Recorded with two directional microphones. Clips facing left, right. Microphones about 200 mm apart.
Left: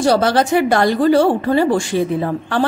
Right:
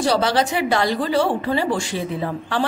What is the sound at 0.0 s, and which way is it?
A woman's voice, 50° left (ahead or behind).